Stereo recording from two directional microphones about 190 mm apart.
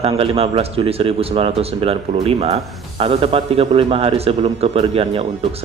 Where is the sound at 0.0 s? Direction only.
30° right (ahead or behind).